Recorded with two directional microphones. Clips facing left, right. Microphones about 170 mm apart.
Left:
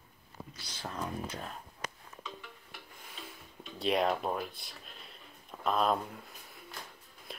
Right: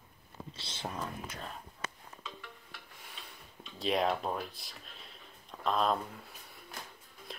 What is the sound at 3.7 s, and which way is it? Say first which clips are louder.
Speech: left 1 dB; centre (ahead or behind).